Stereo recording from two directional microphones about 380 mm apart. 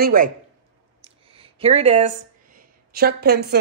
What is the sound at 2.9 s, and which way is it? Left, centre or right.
Speech, right.